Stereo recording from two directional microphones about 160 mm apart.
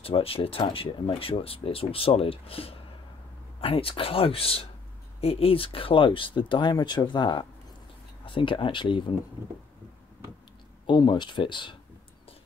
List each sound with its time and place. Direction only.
0.0 s speech: 35° left (ahead or behind)
10.9 s speech: 30° left (ahead or behind)